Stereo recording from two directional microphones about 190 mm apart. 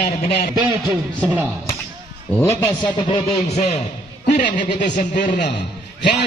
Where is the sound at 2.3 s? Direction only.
15° left (ahead or behind).